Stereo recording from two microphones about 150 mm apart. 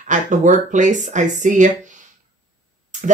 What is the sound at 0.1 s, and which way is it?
Speech, 55° right (ahead or behind).